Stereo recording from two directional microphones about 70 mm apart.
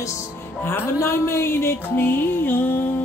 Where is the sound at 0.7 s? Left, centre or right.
Left.